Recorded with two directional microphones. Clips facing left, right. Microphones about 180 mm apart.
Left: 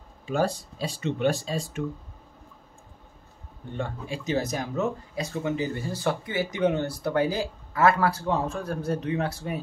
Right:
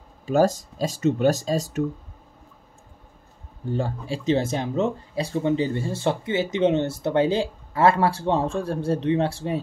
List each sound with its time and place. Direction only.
0.3 s speech: 40° right (ahead or behind)
3.7 s speech: 30° right (ahead or behind)